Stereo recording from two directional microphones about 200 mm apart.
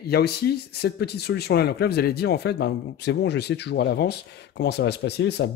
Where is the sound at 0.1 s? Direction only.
50° left (ahead or behind).